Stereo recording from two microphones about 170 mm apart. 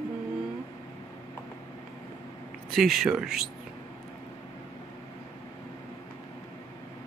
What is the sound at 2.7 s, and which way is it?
Speech, centre (ahead or behind).